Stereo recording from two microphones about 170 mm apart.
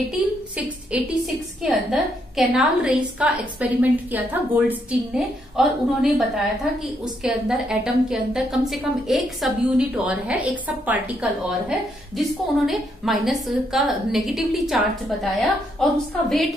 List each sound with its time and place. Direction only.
0.6 s a woman's voice: 5° right (ahead or behind)
7.2 s a woman's voice: 5° right (ahead or behind)